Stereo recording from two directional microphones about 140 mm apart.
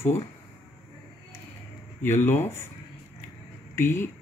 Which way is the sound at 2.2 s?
15° left (ahead or behind).